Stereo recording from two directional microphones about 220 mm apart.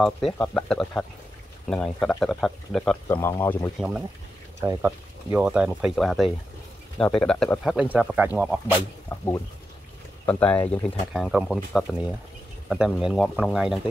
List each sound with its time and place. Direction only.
0.0 s speech: 5° left (ahead or behind)
4.6 s speech: 10° right (ahead or behind); by 7.7 s 5° left (ahead or behind)
7.9 s speech: 5° right (ahead or behind)
9.1 s speech: 10° left (ahead or behind)